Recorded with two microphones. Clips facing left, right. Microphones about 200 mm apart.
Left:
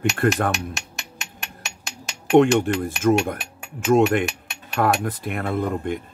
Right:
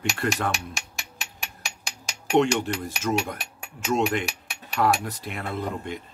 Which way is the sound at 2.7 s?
55° left (ahead or behind).